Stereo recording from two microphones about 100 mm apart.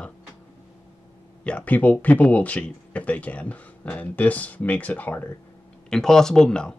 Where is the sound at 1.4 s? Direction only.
15° left (ahead or behind).